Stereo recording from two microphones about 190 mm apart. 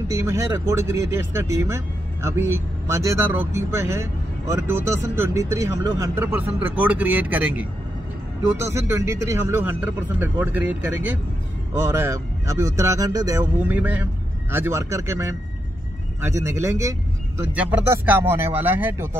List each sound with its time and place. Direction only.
0.1 s speech: 15° right (ahead or behind)